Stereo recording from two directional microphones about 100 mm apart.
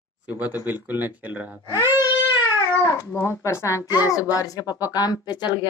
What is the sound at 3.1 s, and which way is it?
A woman's voice, 30° left (ahead or behind).